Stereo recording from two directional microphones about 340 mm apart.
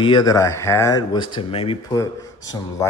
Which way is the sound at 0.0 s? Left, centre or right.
Centre.